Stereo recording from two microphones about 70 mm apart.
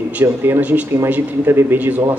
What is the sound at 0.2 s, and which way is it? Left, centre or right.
Speech, right.